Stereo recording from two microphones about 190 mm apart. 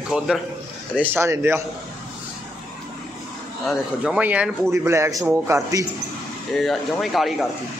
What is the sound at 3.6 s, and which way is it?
Speech, 5° right (ahead or behind).